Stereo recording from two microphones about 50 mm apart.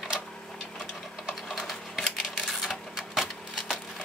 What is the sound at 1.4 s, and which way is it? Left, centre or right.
Typewriter, centre.